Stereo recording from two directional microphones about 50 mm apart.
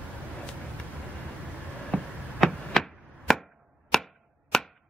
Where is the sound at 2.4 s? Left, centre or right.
Centre.